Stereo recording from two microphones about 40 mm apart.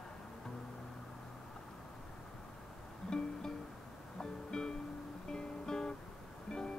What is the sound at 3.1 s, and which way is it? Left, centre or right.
Music, centre.